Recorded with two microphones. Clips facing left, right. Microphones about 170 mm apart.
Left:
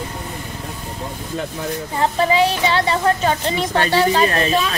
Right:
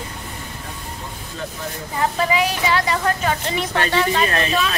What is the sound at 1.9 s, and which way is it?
A woman's voice, 30° left (ahead or behind).